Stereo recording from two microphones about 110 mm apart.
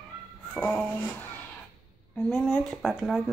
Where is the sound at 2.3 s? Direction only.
Centre (ahead or behind).